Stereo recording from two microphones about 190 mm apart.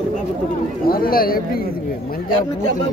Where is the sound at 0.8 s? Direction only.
50° left (ahead or behind).